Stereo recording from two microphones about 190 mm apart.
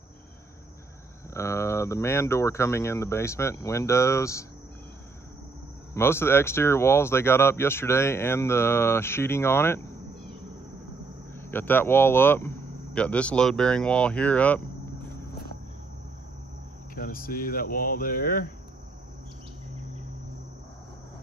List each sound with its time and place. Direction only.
1.3 s speech: 15° left (ahead or behind)
5.9 s speech: 15° left (ahead or behind)
11.4 s speech: 10° left (ahead or behind)
16.9 s speech: 50° left (ahead or behind)